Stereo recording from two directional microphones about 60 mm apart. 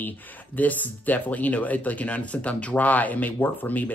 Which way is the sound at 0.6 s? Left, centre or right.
Left.